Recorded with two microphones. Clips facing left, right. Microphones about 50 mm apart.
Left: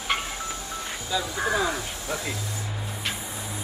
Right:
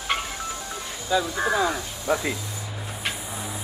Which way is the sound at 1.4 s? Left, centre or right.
Centre.